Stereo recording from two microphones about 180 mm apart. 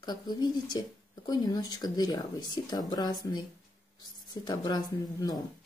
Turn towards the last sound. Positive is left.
turn(degrees=20)  # may be behind; listen again after turning